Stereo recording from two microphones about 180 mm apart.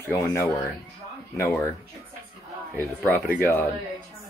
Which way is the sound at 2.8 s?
10° left (ahead or behind).